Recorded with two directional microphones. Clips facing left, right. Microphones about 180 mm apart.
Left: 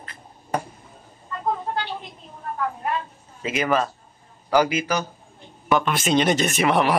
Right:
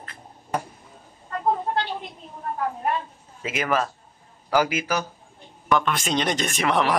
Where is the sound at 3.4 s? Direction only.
5° right (ahead or behind).